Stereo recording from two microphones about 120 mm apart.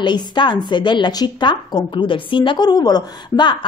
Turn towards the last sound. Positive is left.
turn(degrees=35)  # may be behind; listen again after turning